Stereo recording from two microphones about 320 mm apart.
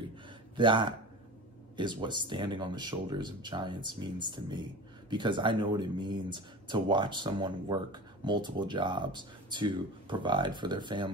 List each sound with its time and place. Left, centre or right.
0.6 s speech: centre